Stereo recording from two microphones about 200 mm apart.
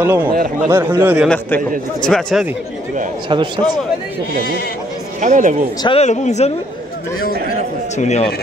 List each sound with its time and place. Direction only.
0.0 s speech: 10° right (ahead or behind)
2.0 s a man's voice: 5° left (ahead or behind)
3.3 s a man's voice: 25° right (ahead or behind)
5.2 s speech: 40° right (ahead or behind)
5.8 s speech: 30° left (ahead or behind)
8.0 s speech: 35° left (ahead or behind)